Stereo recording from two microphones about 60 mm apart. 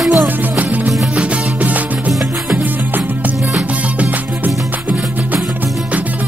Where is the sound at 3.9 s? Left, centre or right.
Right.